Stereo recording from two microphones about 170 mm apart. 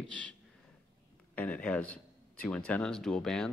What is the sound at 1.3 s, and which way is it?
A man's voice, 5° left (ahead or behind).